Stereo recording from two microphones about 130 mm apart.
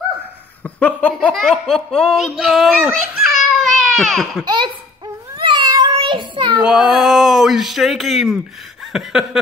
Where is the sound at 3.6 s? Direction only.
Centre (ahead or behind).